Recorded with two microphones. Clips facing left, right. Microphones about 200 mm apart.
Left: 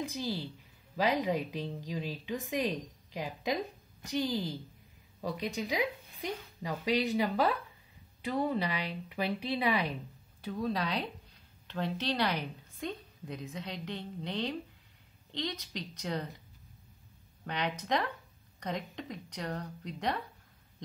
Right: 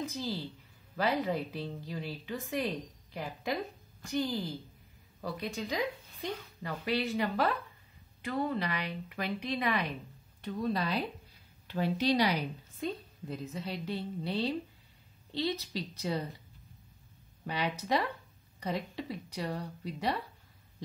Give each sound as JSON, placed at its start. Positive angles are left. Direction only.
{"t": 0.0, "sound": "a woman's voice", "side_deg": 15}
{"t": 17.5, "sound": "a woman's voice", "side_deg": -5}